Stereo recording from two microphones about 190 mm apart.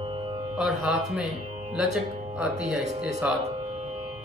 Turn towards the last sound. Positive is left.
turn(degrees=0)  # may be behind; listen again after turning